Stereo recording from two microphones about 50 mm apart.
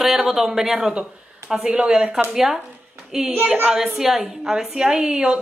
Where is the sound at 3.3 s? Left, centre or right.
Right.